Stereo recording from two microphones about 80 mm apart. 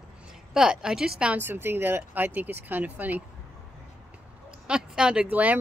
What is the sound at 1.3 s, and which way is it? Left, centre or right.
Speech, right.